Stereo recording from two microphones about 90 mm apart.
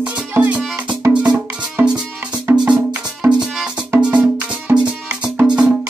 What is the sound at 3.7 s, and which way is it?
Music, 15° right (ahead or behind).